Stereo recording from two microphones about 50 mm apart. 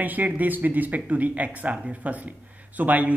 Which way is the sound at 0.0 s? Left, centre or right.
Right.